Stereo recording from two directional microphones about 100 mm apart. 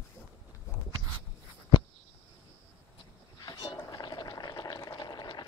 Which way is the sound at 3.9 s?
45° left (ahead or behind).